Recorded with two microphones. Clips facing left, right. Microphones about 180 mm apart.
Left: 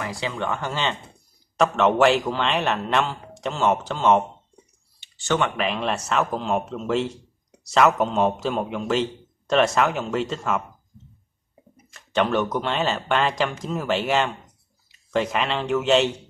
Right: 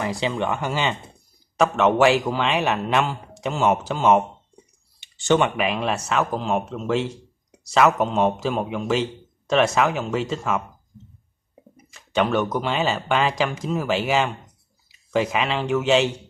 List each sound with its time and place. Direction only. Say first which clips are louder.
0.0 s a man's voice: right 4 dB; 20° right (ahead or behind); by 4.2 s 5° right (ahead or behind)
5.0 s computer keyboard: right 4 dB; 15° right (ahead or behind)
5.6 s a man's voice: right 1 dB; 5° right (ahead or behind)
11.7 s a man's voice: right 1 dB; centre (ahead or behind)